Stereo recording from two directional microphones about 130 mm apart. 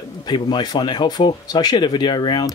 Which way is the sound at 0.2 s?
35° left (ahead or behind).